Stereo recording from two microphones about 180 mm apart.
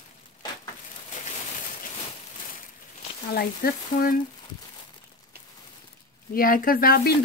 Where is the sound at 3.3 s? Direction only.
55° left (ahead or behind).